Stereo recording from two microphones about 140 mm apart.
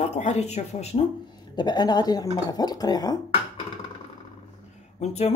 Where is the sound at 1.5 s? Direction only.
30° left (ahead or behind).